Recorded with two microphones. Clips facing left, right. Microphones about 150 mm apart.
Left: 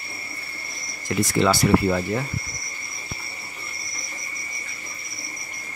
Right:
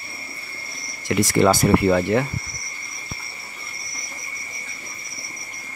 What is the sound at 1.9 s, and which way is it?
Speech, 70° right (ahead or behind).